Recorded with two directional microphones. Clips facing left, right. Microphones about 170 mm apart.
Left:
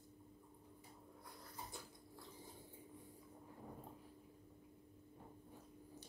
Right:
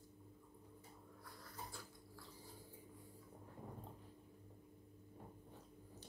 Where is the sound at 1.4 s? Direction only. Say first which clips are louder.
Even; 20° left (ahead or behind).